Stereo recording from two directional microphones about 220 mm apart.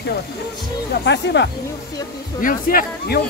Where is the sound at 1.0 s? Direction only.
50° left (ahead or behind).